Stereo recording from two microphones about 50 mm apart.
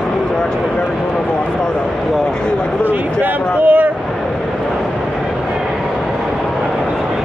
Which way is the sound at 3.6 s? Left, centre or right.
Right.